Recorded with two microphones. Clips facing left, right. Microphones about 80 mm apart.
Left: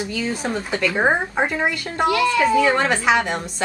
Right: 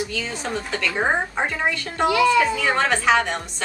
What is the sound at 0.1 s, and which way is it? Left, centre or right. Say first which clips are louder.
A woman's voice: left 3 dB; centre.